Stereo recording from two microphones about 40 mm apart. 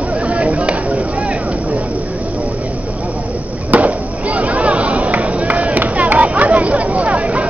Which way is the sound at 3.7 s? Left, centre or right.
Right.